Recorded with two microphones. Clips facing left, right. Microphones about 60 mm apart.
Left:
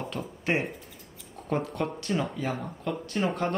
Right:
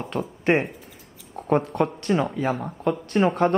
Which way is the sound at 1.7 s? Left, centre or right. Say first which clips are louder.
Right 7 dB; right.